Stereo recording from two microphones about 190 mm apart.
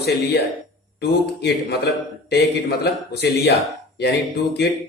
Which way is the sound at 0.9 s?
60° left (ahead or behind).